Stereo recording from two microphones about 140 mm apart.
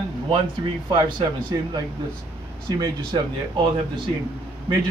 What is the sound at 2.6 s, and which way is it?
Speech, 30° right (ahead or behind).